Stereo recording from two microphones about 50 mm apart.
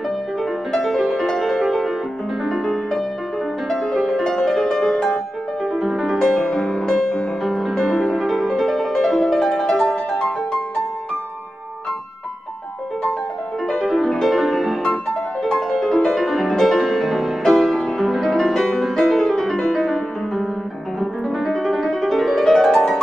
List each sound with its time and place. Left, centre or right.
0.4 s music: centre
6.1 s music: centre
7.4 s music: centre
13.8 s music: centre
14.8 s music: centre